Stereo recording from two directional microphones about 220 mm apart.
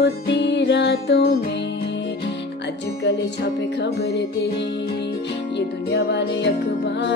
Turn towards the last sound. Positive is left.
turn(degrees=50)  # may be behind; listen again after turning